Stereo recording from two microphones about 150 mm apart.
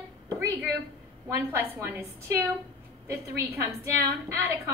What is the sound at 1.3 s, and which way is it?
A woman's voice, 15° right (ahead or behind).